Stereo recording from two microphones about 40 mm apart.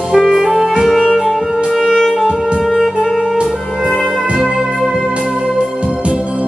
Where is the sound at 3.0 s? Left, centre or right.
Centre.